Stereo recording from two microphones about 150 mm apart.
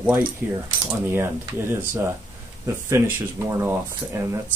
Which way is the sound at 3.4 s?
15° right (ahead or behind).